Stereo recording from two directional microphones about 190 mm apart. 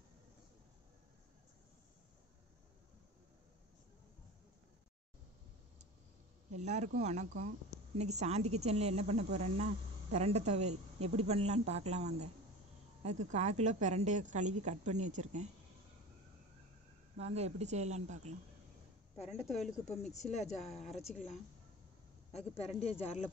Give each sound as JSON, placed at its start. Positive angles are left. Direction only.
{"t": 6.5, "sound": "a woman's voice", "side_deg": -35}
{"t": 17.2, "sound": "a woman's voice", "side_deg": -35}
{"t": 19.1, "sound": "a woman's voice", "side_deg": 35}
{"t": 22.6, "sound": "speech", "side_deg": 35}